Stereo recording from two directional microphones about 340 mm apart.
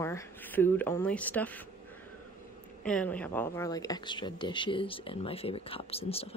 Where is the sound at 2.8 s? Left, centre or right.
Centre.